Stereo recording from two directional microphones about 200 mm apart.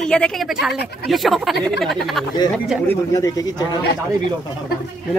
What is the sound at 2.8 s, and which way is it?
Speech, 15° left (ahead or behind).